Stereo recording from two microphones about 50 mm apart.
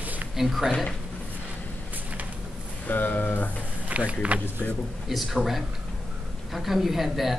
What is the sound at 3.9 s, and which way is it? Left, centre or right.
Speech, right.